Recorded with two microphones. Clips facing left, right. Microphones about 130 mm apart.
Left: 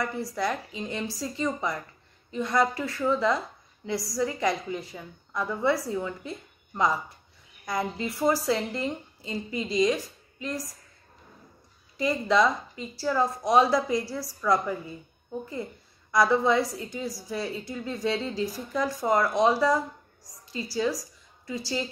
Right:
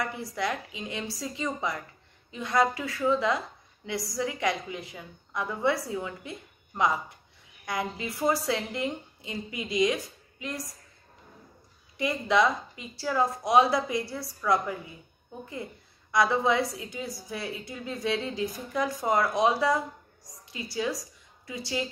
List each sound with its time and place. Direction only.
0.0 s a woman's voice: centre (ahead or behind)
7.6 s a woman's voice: 5° right (ahead or behind)
12.0 s a woman's voice: 5° right (ahead or behind)
16.1 s a woman's voice: 5° right (ahead or behind)
20.7 s a woman's voice: centre (ahead or behind)